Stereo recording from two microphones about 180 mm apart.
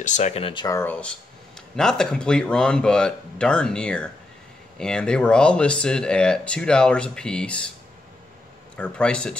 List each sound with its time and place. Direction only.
0.0 s speech: 40° left (ahead or behind); by 7.7 s 5° left (ahead or behind)
8.7 s speech: 5° left (ahead or behind)